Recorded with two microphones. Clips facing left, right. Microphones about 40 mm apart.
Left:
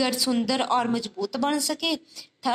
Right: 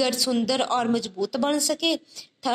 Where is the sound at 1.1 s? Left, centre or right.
Centre.